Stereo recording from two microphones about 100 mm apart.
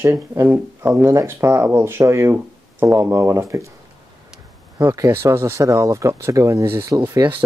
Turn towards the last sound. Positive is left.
turn(degrees=-35)  # may be behind; listen again after turning